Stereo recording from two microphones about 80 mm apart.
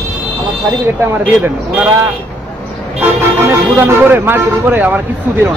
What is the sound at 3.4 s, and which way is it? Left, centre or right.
A man's voice, right.